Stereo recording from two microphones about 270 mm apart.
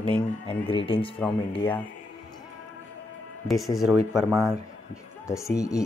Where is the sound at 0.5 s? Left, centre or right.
Centre.